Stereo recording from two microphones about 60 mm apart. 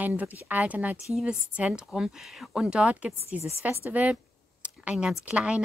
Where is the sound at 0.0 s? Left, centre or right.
Right.